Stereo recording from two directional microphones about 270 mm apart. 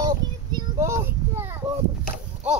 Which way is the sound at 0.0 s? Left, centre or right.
Centre.